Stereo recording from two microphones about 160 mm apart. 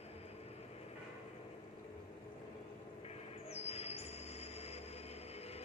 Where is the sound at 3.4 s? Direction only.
40° left (ahead or behind).